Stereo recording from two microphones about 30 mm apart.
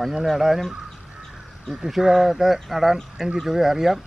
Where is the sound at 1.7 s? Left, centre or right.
Centre.